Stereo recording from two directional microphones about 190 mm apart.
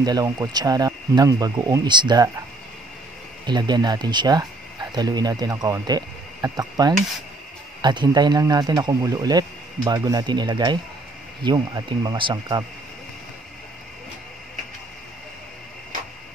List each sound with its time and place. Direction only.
0.0 s speech: 20° right (ahead or behind)
3.4 s speech: 20° right (ahead or behind)